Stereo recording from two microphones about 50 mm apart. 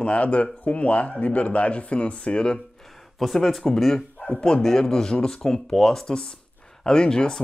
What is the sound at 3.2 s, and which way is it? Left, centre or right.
Speech, centre.